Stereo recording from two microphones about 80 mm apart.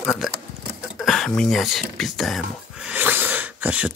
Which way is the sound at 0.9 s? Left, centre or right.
Centre.